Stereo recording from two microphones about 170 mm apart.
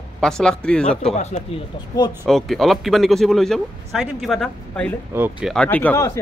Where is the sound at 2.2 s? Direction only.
Centre (ahead or behind).